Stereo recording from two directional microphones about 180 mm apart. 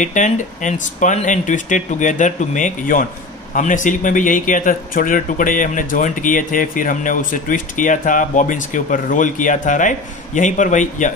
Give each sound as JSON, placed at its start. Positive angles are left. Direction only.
{"t": 0.0, "sound": "speech", "side_deg": 45}